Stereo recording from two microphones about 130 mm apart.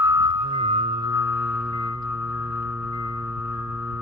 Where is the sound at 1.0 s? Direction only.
20° right (ahead or behind).